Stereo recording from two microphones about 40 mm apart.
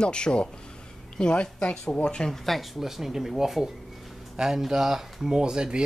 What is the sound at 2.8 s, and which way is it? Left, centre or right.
Speech, centre.